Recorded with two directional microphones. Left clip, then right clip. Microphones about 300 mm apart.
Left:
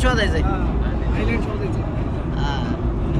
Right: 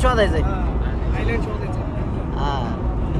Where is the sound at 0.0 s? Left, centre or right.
Right.